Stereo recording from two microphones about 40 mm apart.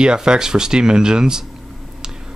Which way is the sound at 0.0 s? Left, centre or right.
Right.